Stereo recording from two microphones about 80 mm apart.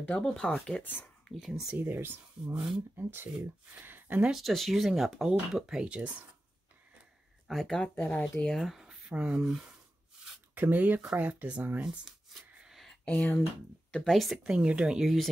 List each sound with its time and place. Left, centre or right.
0.2 s speech: centre
1.3 s speech: centre
1.8 s speech: right
2.4 s speech: centre
3.0 s speech: right
4.3 s speech: centre
7.4 s speech: centre
9.1 s speech: centre
10.2 s a sound: centre
10.5 s speech: right
12.5 s a sound: centre
13.1 s speech: left
13.9 s speech: centre
14.4 s speech: centre